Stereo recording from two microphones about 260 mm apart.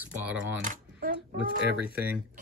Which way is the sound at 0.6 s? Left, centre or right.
Right.